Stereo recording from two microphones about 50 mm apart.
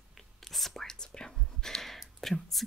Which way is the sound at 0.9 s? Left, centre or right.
Centre.